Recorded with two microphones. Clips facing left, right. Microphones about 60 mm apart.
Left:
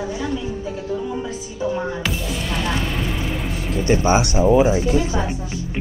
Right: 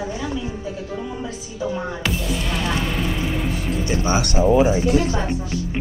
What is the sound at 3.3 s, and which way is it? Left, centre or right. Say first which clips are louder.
Speech: right 2 dB; centre.